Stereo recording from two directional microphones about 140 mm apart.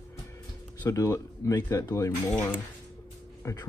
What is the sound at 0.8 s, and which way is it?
Speech, 20° left (ahead or behind).